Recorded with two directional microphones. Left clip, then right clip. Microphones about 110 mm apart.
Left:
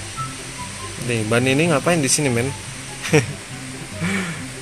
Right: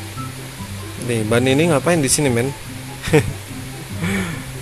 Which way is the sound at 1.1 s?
20° right (ahead or behind).